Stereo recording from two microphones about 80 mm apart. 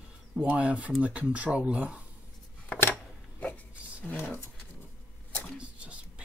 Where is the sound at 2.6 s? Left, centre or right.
Left.